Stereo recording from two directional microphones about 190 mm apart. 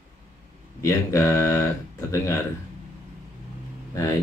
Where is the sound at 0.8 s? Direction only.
15° left (ahead or behind).